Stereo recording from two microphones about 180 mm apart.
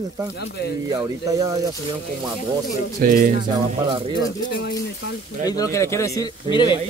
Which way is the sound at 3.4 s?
25° right (ahead or behind).